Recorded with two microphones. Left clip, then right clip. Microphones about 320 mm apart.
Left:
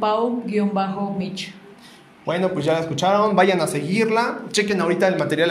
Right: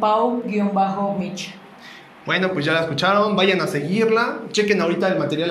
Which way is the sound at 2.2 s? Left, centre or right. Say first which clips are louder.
Right 1 dB; left.